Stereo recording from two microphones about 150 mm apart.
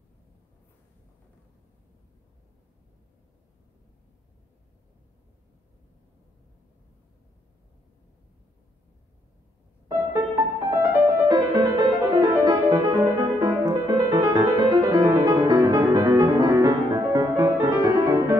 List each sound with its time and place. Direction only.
9.8 s music: 20° right (ahead or behind)